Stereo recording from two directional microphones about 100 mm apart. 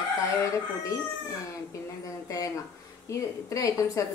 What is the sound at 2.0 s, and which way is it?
A woman's voice, 35° left (ahead or behind).